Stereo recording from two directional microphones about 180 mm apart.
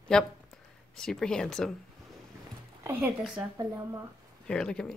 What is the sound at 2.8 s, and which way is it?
Speech, 10° right (ahead or behind).